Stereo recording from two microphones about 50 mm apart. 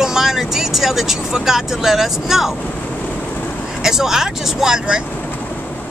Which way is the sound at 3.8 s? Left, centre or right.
Centre.